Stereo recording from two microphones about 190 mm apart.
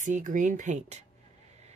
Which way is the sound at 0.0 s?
40° right (ahead or behind).